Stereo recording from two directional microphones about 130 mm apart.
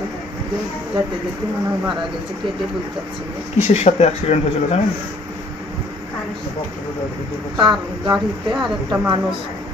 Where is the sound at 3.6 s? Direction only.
55° left (ahead or behind).